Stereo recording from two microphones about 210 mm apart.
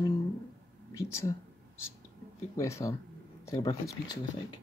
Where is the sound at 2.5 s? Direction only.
15° left (ahead or behind).